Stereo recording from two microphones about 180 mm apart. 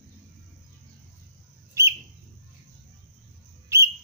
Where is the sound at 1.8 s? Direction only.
15° right (ahead or behind).